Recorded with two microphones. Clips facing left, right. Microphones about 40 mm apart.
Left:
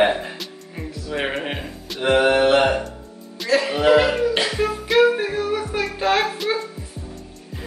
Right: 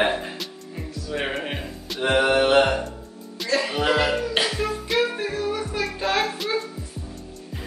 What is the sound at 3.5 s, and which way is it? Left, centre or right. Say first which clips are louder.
Music: left 6 dB; centre.